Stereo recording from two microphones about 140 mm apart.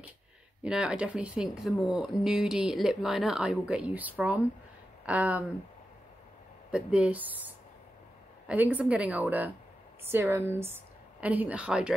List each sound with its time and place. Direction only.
0.7 s speech: 5° right (ahead or behind)
6.7 s a woman's voice: 5° right (ahead or behind)
8.5 s a woman's voice: 10° right (ahead or behind)